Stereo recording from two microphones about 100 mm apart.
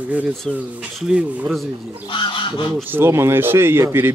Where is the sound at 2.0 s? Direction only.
55° left (ahead or behind).